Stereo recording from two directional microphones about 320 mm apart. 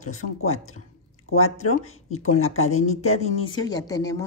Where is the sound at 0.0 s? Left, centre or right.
Left.